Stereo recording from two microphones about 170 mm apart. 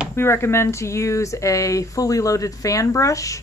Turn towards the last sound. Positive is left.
turn(degrees=20)  # may be behind; listen again after turning